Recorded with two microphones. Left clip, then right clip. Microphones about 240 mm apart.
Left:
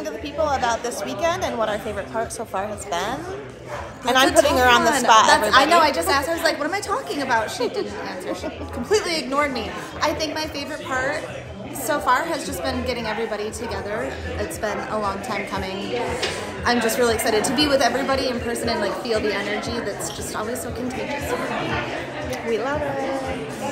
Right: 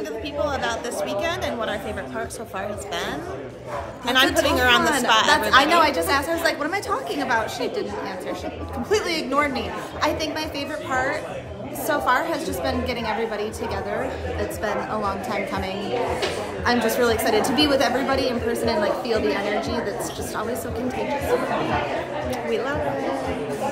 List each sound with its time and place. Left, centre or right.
0.4 s a woman's voice: centre
5.5 s a woman's voice: centre
8.8 s a woman's voice: centre
14.6 s a woman's voice: centre
16.6 s a woman's voice: centre
22.3 s a woman's voice: centre